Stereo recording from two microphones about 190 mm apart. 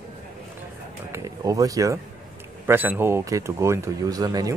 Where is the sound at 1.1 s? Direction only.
15° right (ahead or behind).